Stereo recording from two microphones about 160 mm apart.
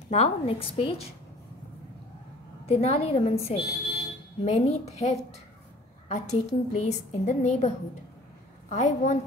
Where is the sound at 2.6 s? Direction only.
40° left (ahead or behind).